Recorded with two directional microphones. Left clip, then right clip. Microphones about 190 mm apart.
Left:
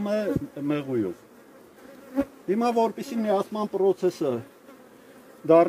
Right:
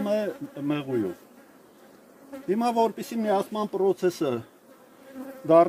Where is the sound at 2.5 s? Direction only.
15° right (ahead or behind); by 4.4 s 35° right (ahead or behind).